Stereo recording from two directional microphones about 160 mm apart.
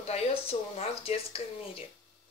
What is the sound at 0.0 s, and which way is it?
Speech, 40° left (ahead or behind).